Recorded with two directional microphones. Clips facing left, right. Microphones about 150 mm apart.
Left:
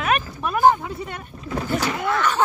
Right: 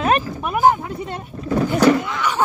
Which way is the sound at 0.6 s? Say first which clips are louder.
Right 1 dB; 5° right (ahead or behind).